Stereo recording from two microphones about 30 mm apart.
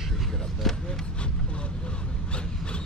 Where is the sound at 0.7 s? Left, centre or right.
Centre.